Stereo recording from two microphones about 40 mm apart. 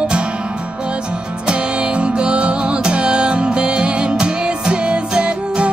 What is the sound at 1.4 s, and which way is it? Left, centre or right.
Music, right.